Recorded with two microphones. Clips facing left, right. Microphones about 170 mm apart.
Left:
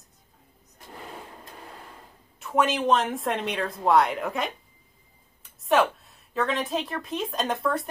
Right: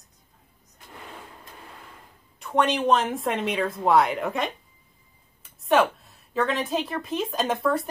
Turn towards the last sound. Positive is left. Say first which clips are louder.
# right 2 dB
turn(degrees=0)  # may be behind; listen again after turning